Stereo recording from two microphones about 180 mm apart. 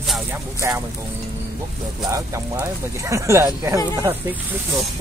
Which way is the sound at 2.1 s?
15° right (ahead or behind).